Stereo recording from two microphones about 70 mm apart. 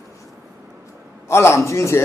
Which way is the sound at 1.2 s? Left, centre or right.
Left.